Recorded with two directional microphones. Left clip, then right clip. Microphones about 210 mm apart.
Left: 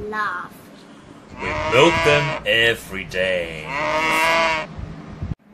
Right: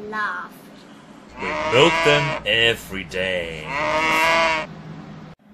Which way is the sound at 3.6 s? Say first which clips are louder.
Right 1 dB; centre (ahead or behind).